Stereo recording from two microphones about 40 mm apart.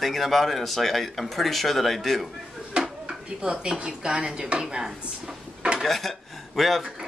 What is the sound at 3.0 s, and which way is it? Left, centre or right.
Dishes, right.